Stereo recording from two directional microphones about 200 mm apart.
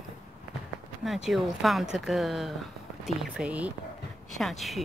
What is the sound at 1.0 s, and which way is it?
Speech, centre (ahead or behind).